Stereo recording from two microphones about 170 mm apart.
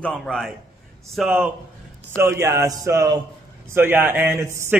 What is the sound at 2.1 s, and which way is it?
A man's voice, 15° right (ahead or behind).